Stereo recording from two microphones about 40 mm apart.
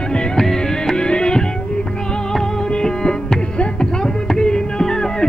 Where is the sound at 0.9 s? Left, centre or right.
Left.